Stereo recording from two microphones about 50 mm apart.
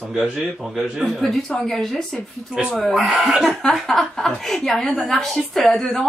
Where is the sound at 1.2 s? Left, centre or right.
Centre.